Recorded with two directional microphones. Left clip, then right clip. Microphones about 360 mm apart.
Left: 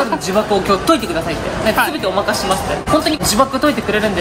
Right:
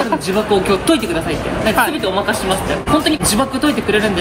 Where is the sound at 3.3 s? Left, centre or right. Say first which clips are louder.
Left 2 dB; centre.